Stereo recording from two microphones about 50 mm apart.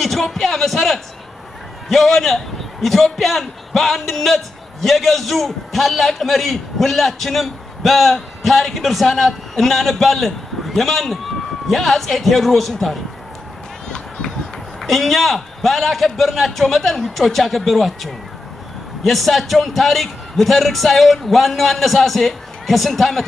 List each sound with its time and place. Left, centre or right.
0.0 s a man's voice: centre
13.8 s run: centre
14.8 s a man's voice: centre